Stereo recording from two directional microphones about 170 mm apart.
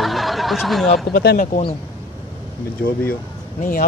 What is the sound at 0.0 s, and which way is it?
Snicker, centre (ahead or behind).